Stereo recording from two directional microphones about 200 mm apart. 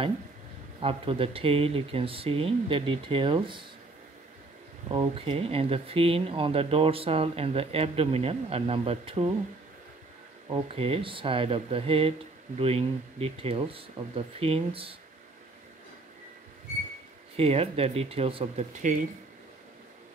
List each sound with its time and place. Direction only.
0.7 s speech: 25° right (ahead or behind)
4.8 s speech: 25° right (ahead or behind)
10.5 s speech: 30° right (ahead or behind)
17.4 s speech: 30° right (ahead or behind)